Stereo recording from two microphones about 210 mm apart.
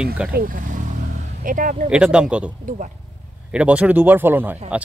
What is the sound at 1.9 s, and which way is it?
Speech, 5° right (ahead or behind).